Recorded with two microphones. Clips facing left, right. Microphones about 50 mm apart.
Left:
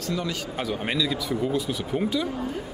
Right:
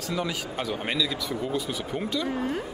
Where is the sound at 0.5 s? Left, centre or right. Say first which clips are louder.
Left 1 dB; centre.